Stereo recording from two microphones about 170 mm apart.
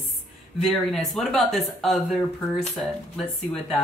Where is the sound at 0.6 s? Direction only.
Centre (ahead or behind).